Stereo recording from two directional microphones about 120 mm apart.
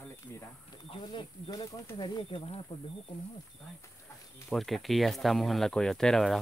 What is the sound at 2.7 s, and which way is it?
Speech, 55° left (ahead or behind).